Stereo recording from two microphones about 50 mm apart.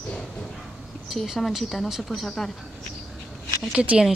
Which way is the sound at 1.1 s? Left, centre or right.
Centre.